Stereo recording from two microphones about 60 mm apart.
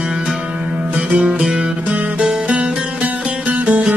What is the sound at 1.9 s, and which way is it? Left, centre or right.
Music, right.